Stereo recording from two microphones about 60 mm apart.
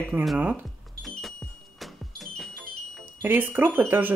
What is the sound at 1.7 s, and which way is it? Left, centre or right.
Music, centre.